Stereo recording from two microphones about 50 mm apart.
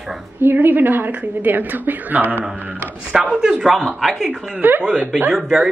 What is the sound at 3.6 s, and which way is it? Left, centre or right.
Speech, centre.